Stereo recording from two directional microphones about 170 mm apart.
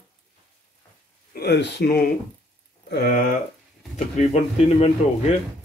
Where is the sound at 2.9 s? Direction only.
65° left (ahead or behind).